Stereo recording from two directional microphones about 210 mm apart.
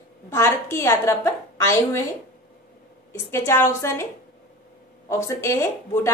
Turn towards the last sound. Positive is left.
turn(degrees=15)  # may be behind; listen again after turning